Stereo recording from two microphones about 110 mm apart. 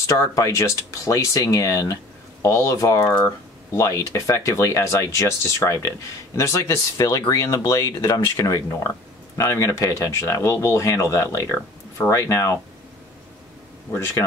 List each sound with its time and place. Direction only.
0.0 s speech: 30° left (ahead or behind)
13.9 s speech: 25° left (ahead or behind)